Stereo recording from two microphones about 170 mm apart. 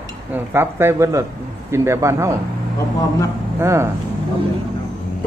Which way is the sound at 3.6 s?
15° right (ahead or behind).